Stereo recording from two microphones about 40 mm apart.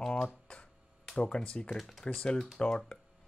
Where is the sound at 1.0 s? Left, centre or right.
Left.